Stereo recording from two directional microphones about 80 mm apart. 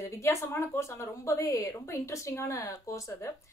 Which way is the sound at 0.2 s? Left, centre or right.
Left.